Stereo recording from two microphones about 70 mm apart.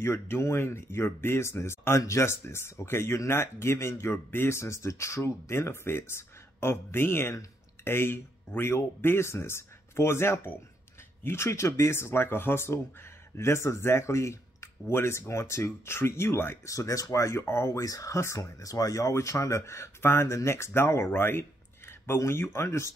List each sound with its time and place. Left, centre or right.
0.0 s speech: left
16.7 s speech: left
17.8 s speech: left